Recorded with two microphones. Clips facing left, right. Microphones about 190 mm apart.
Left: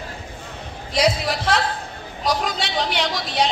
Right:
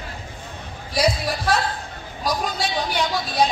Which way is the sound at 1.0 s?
75° left (ahead or behind).